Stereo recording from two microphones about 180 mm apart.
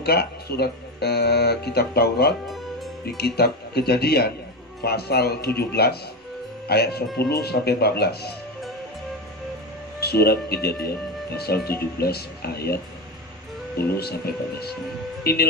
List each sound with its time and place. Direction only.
0.0 s speech: 60° left (ahead or behind)
9.9 s speech: 60° left (ahead or behind)